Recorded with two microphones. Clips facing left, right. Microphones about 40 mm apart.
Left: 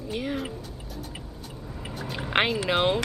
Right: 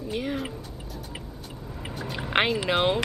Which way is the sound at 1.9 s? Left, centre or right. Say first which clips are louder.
Even; centre.